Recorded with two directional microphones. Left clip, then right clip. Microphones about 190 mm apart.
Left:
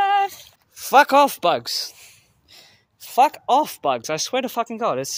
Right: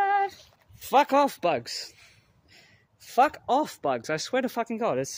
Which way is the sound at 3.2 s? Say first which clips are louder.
Left 6 dB; 10° left (ahead or behind).